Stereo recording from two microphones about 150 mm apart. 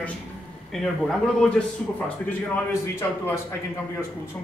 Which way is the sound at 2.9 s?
15° left (ahead or behind).